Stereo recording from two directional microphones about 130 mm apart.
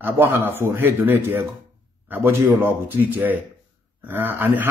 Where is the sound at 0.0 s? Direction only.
15° right (ahead or behind).